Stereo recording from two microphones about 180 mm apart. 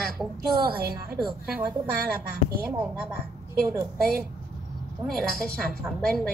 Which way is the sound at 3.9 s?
55° right (ahead or behind).